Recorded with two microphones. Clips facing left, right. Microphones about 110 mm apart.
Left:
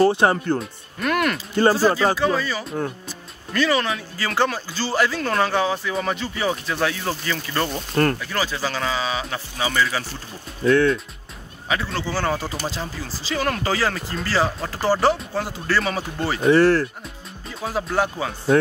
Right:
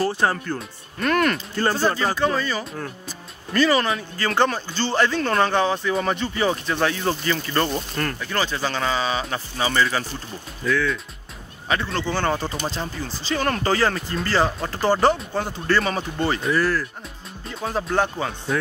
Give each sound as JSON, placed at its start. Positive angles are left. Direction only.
{"t": 0.1, "sound": "speech", "side_deg": 20}
{"t": 0.6, "sound": "speech", "side_deg": 5}
{"t": 7.9, "sound": "speech", "side_deg": 40}
{"t": 8.2, "sound": "speech", "side_deg": 5}
{"t": 11.7, "sound": "speech", "side_deg": 5}
{"t": 16.5, "sound": "speech", "side_deg": 70}
{"t": 17.5, "sound": "speech", "side_deg": 0}